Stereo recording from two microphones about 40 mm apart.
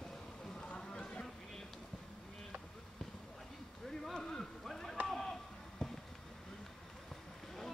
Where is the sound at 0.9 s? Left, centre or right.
Left.